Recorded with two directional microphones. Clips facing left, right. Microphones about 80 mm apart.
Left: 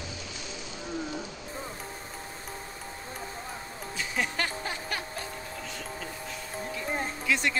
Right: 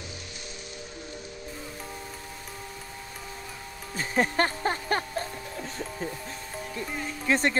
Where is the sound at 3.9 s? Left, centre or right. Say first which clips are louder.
Right 6 dB; right.